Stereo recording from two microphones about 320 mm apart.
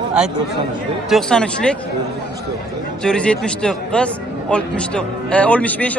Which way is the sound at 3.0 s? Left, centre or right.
Centre.